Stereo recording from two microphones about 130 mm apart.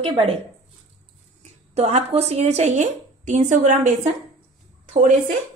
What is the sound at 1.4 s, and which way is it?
Speech, 55° right (ahead or behind).